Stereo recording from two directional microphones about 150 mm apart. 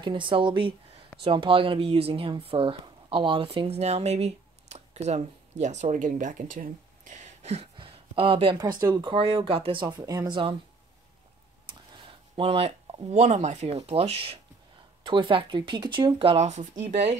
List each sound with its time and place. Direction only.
0.0 s speech: 35° right (ahead or behind); by 7.2 s 60° right (ahead or behind)
7.4 s a sound: 40° right (ahead or behind)
8.5 s speech: 25° right (ahead or behind)
9.1 s speech: 35° right (ahead or behind)
11.9 s speech: 35° right (ahead or behind)